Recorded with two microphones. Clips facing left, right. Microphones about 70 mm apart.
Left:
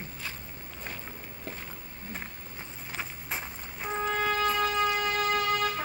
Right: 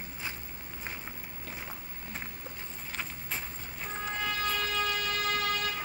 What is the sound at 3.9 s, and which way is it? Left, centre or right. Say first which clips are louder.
Music: left 6 dB; left.